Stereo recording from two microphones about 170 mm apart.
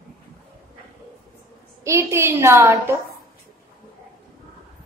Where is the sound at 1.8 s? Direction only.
15° right (ahead or behind).